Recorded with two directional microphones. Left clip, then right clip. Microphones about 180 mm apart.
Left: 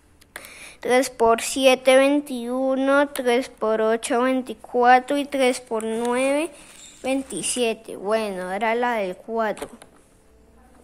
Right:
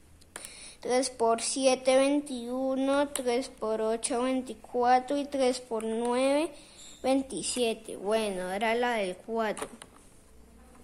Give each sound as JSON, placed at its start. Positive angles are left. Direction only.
{"t": 0.5, "sound": "a woman's voice", "side_deg": 20}